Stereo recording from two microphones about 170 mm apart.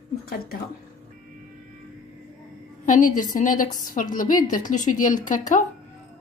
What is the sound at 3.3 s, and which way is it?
A woman's voice, 50° left (ahead or behind).